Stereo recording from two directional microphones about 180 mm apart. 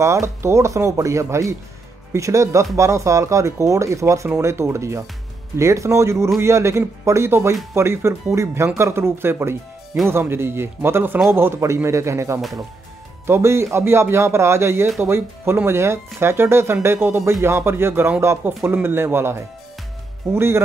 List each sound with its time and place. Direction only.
0.0 s speech: 15° right (ahead or behind)